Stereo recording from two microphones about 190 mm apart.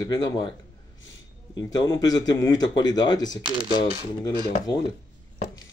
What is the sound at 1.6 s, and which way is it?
Speech, 20° left (ahead or behind).